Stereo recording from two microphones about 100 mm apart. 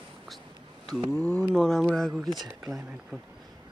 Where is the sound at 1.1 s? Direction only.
10° left (ahead or behind).